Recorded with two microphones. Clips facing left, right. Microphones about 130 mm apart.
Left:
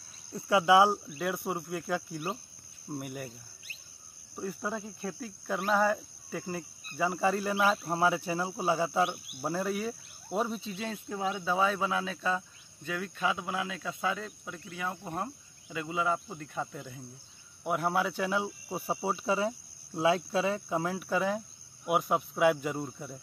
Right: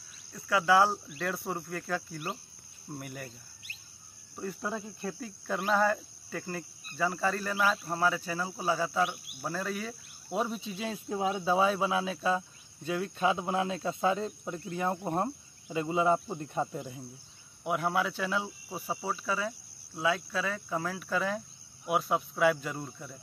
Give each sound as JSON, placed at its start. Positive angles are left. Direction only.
{"t": 0.3, "sound": "speech", "side_deg": 25}
{"t": 1.0, "sound": "speech", "side_deg": 5}
{"t": 4.4, "sound": "speech", "side_deg": 0}
{"t": 7.2, "sound": "speech", "side_deg": 20}
{"t": 9.7, "sound": "speech", "side_deg": 5}
{"t": 11.1, "sound": "speech", "side_deg": -15}
{"t": 17.6, "sound": "speech", "side_deg": 0}
{"t": 18.7, "sound": "speech", "side_deg": 25}
{"t": 21.0, "sound": "speech", "side_deg": 10}